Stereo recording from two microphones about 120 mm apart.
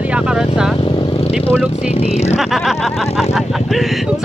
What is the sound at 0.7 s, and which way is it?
Vehicle, 45° left (ahead or behind).